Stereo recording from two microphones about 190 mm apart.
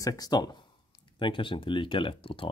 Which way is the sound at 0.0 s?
20° left (ahead or behind).